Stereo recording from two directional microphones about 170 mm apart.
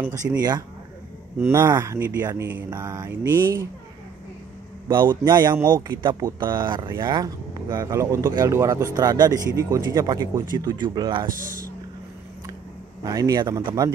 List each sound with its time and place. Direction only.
0.4 s speech: 25° right (ahead or behind)
4.8 s a man's voice: 25° right (ahead or behind)
13.0 s speech: 20° right (ahead or behind)